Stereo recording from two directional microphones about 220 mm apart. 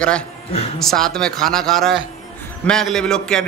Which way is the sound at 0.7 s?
Centre (ahead or behind).